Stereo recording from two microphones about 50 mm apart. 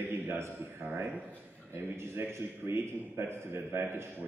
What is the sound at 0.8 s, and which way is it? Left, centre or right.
A man's voice, right.